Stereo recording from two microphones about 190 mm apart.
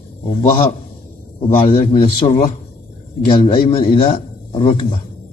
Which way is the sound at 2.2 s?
30° left (ahead or behind).